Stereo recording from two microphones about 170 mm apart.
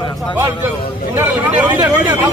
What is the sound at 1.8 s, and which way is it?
Speech, 20° right (ahead or behind).